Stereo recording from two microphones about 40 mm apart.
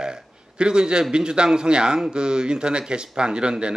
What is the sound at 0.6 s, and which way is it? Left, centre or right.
Speech, right.